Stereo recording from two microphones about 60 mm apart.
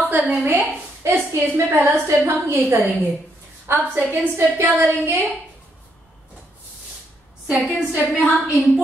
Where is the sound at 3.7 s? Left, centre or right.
Right.